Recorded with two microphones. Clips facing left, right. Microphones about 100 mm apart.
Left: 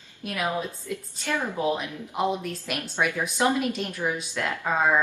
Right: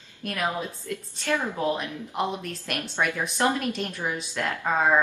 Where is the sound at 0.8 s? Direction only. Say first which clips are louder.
Right 2 dB; 5° left (ahead or behind).